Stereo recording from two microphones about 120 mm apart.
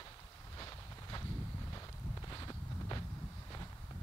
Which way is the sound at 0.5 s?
30° left (ahead or behind).